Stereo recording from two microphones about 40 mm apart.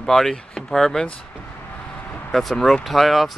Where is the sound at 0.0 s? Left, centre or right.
Centre.